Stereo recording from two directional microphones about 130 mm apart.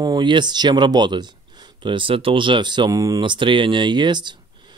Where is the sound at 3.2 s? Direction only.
40° right (ahead or behind).